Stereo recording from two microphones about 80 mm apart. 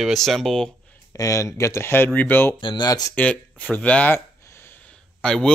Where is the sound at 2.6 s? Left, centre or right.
Left.